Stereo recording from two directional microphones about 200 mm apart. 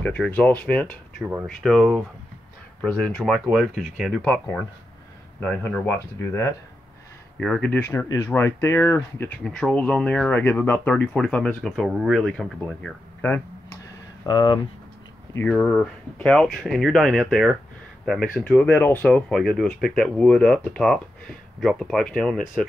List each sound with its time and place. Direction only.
0.0 s speech: 5° left (ahead or behind)
14.2 s speech: 20° left (ahead or behind)
15.3 s speech: 5° left (ahead or behind)